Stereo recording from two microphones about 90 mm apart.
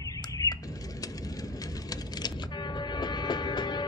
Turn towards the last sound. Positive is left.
turn(degrees=55)  # may be behind; listen again after turning